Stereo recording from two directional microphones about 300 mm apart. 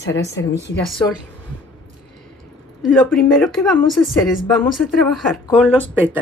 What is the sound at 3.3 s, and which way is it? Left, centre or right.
Speech, centre.